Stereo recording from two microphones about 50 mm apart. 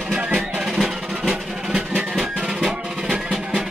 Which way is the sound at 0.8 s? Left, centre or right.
Centre.